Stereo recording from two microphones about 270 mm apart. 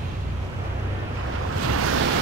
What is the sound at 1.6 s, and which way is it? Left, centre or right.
Waves, right.